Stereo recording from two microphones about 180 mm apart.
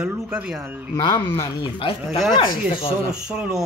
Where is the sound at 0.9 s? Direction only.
25° left (ahead or behind).